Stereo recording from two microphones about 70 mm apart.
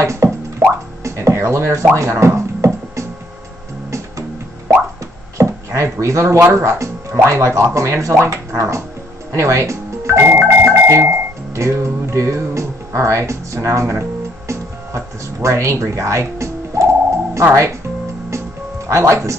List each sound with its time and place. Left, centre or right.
0.0 s music: right
5.4 s speech: right
14.5 s music: right
18.9 s speech: right